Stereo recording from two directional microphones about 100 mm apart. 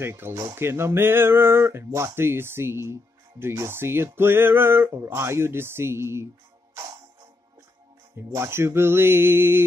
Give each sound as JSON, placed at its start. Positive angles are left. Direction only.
{"t": 0.0, "sound": "speech", "side_deg": -25}
{"t": 8.2, "sound": "speech", "side_deg": -25}